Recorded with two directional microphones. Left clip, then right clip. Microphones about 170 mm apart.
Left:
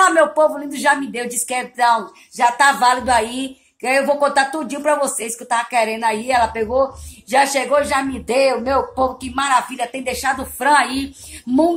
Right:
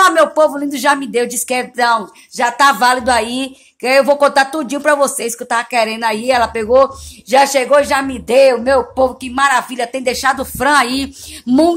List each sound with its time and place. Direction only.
0.0 s speech: 50° right (ahead or behind)